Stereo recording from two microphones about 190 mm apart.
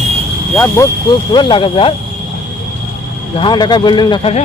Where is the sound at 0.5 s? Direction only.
10° left (ahead or behind).